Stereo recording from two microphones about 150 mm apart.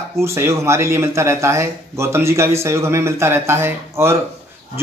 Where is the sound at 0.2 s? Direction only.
20° right (ahead or behind).